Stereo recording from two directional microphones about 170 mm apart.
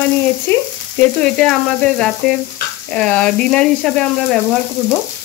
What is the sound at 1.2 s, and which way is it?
Frying, 5° left (ahead or behind).